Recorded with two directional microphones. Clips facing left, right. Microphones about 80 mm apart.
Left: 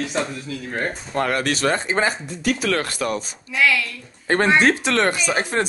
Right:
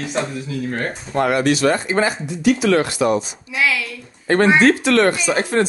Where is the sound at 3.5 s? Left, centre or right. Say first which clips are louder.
Left 1 dB; centre.